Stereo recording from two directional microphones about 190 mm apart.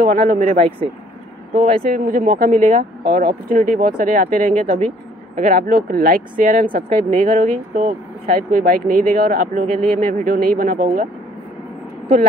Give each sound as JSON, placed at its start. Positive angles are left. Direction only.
{"t": 0.0, "sound": "speech", "side_deg": -45}
{"t": 1.8, "sound": "speech", "side_deg": -45}